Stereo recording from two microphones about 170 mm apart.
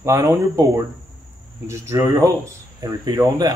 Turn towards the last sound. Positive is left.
turn(degrees=-20)  # may be behind; listen again after turning